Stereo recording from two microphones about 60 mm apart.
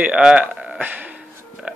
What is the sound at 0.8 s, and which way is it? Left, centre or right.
Speech, right.